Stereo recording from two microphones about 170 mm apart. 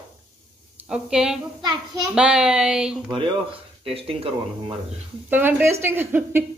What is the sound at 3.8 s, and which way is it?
Speech, 35° right (ahead or behind).